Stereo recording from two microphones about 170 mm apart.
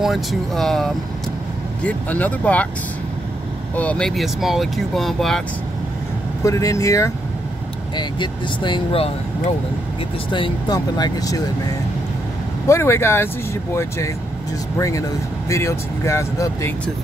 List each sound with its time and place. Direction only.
0.0 s speech: centre (ahead or behind)
3.7 s speech: 5° left (ahead or behind)
6.4 s speech: 20° left (ahead or behind)
10.3 s speech: 25° left (ahead or behind)
12.6 s speech: 15° left (ahead or behind)